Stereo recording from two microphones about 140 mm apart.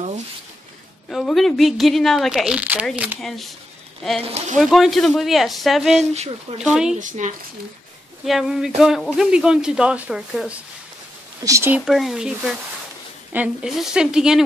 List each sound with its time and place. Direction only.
1.1 s speech: centre (ahead or behind)
3.2 s speech: centre (ahead or behind)
4.2 s speech: 50° right (ahead or behind)
4.6 s speech: centre (ahead or behind)
7.0 s speech: 65° right (ahead or behind)
8.3 s speech: centre (ahead or behind)
11.4 s speech: 20° right (ahead or behind)
11.7 s speech: 5° right (ahead or behind)